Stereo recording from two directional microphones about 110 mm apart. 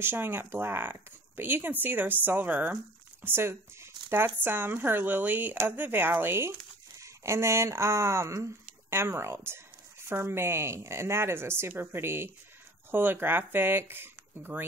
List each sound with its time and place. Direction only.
0.0 s a woman's voice: 20° right (ahead or behind)